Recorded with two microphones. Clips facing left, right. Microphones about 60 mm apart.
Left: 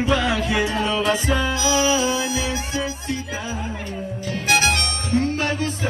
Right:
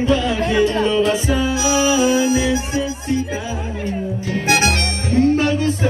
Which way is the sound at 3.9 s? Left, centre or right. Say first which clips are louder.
Right 5 dB; right.